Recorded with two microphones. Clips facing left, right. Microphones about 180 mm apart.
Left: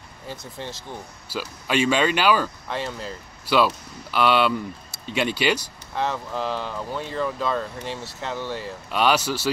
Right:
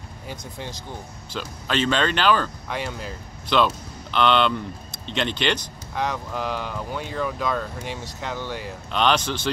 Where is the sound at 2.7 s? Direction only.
10° right (ahead or behind).